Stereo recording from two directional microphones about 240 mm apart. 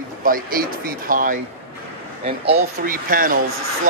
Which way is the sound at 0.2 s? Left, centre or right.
Right.